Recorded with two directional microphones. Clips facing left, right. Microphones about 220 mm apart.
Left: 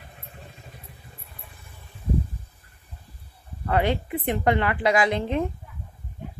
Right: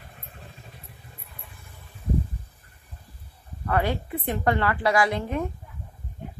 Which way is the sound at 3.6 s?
20° left (ahead or behind).